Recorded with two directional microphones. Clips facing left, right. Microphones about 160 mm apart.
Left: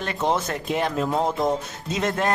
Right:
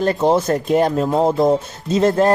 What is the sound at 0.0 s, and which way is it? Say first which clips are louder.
A man's voice: right 8 dB; 35° right (ahead or behind).